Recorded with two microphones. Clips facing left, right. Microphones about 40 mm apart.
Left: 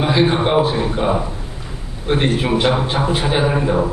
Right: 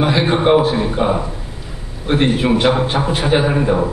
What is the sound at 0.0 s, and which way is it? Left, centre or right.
A man's voice, centre.